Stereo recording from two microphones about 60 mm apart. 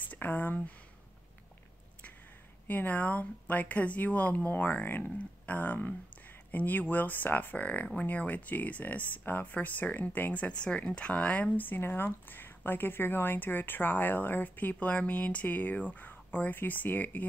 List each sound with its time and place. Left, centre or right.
0.1 s speech: left
2.7 s speech: left